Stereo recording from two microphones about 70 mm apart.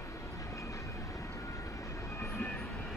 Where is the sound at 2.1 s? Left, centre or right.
Left.